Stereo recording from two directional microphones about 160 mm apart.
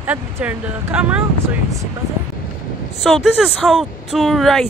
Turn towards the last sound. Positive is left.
turn(degrees=0)  # may be behind; listen again after turning